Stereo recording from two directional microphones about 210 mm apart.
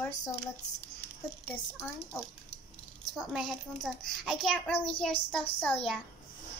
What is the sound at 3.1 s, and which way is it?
A child's voice, centre (ahead or behind).